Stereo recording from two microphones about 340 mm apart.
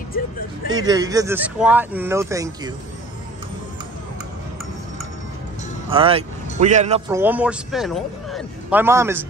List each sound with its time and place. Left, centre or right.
0.7 s speech: centre
5.9 s a man's voice: centre
7.1 s a man's voice: centre